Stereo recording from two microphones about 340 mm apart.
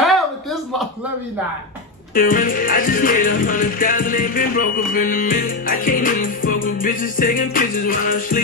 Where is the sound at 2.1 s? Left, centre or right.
Left.